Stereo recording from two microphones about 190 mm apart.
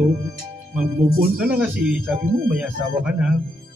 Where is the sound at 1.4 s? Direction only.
5° right (ahead or behind).